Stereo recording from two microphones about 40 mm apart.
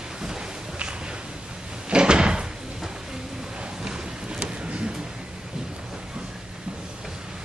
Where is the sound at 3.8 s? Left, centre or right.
Centre.